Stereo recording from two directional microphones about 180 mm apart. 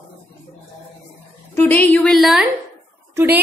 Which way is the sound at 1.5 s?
10° left (ahead or behind).